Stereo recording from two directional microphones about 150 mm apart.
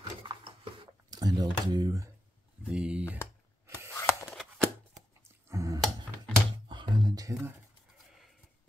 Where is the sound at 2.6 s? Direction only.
5° right (ahead or behind).